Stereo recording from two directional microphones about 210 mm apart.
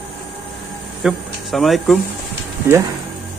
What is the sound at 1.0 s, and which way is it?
Speech, centre (ahead or behind).